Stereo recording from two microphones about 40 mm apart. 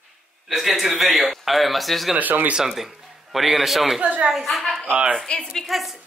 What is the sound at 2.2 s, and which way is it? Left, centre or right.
Speech, right.